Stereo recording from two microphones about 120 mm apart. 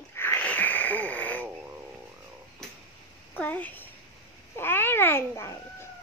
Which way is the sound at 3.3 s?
15° left (ahead or behind).